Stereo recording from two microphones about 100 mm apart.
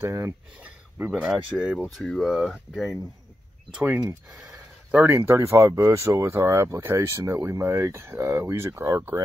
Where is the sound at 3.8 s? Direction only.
25° right (ahead or behind).